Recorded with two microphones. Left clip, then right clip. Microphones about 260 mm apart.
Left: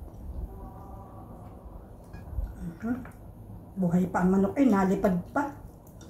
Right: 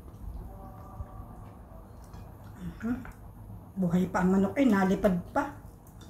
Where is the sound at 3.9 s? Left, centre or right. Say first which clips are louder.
Left 1 dB; centre.